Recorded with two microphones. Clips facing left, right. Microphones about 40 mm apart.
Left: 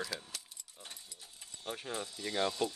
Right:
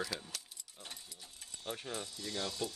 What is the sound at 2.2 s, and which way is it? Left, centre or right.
Speech, left.